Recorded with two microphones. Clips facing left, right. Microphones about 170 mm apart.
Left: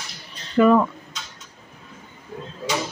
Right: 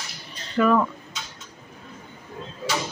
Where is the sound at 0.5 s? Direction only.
25° left (ahead or behind).